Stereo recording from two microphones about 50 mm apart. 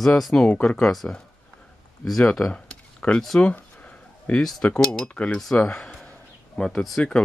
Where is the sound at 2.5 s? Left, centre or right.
Left.